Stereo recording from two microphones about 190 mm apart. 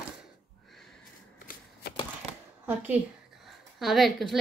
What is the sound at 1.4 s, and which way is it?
Shuffling cards, 50° left (ahead or behind).